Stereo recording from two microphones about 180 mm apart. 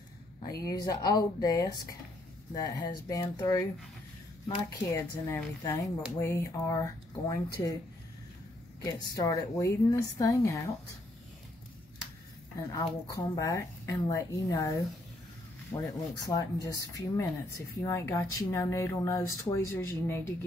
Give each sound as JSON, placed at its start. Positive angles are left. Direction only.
{"t": 0.5, "sound": "speech", "side_deg": 20}
{"t": 4.9, "sound": "a woman's voice", "side_deg": 15}
{"t": 9.1, "sound": "speech", "side_deg": 20}
{"t": 12.6, "sound": "a woman's voice", "side_deg": 20}